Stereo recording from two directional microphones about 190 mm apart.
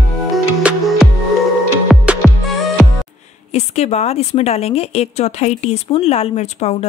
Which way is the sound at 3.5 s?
35° left (ahead or behind).